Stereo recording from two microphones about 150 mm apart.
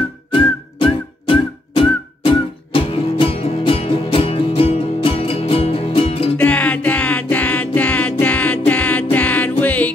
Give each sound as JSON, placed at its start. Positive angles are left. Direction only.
{"t": 0.3, "sound": "music", "side_deg": 35}
{"t": 6.3, "sound": "music", "side_deg": 10}